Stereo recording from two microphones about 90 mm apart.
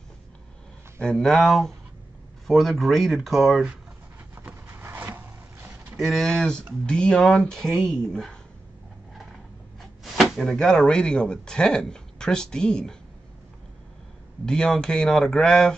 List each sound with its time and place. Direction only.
1.0 s speech: 5° left (ahead or behind)
4.4 s rub: 20° right (ahead or behind)
5.9 s speech: centre (ahead or behind)
9.8 s speech: centre (ahead or behind)
14.4 s speech: 10° left (ahead or behind)